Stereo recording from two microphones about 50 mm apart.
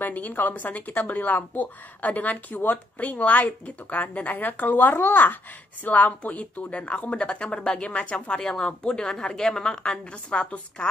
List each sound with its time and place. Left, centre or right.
0.0 s a woman's voice: left